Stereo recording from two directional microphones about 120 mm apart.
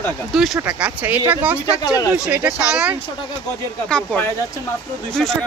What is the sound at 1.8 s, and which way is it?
Speech, 30° left (ahead or behind).